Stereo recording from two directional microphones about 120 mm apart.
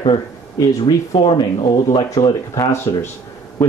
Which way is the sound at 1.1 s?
45° left (ahead or behind).